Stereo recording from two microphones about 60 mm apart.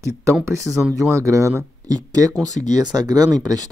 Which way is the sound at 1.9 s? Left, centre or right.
Right.